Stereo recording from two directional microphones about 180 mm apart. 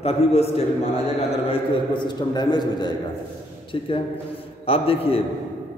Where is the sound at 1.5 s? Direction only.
25° left (ahead or behind).